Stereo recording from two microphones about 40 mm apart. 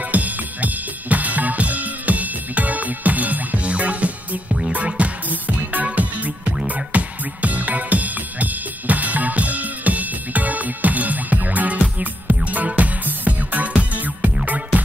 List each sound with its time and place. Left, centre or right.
0.1 s drum kit: right
4.5 s music: centre
4.7 s music: right